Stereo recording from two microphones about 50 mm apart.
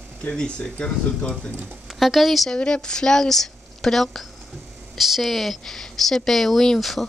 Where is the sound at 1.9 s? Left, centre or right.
Centre.